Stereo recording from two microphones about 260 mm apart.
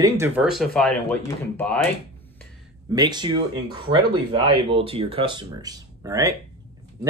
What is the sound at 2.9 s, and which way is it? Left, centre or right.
Speech, centre.